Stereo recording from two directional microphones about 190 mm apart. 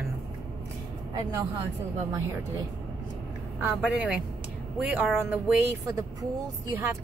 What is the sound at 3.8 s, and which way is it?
Speech, 5° right (ahead or behind).